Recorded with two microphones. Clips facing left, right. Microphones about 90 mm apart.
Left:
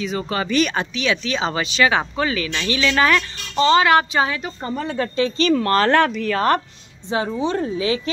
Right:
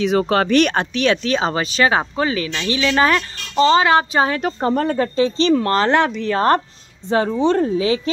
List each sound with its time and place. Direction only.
0.0 s speech: 70° right (ahead or behind); by 4.4 s 35° right (ahead or behind)
4.4 s speech: 70° right (ahead or behind)
4.9 s speech: 30° right (ahead or behind)
7.6 s speech: 30° right (ahead or behind)